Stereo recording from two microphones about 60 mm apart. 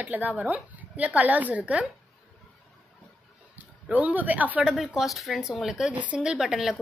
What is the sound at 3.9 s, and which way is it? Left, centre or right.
Speech, right.